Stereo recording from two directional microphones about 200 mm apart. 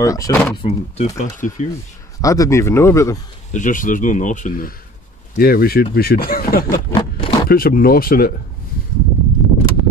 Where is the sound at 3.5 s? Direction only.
40° left (ahead or behind).